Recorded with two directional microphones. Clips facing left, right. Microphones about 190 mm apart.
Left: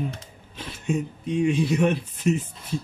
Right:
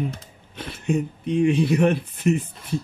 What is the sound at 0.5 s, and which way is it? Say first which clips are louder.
Speech: right 3 dB; 60° right (ahead or behind).